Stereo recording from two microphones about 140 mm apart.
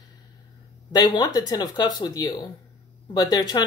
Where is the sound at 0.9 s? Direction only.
30° left (ahead or behind).